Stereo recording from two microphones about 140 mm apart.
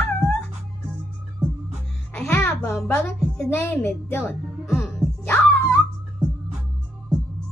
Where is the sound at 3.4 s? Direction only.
15° left (ahead or behind).